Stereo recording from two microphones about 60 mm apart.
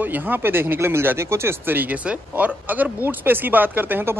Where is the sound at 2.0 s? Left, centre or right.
Right.